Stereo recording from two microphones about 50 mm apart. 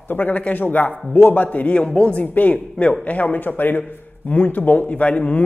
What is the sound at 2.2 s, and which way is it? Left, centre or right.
A man's voice, left.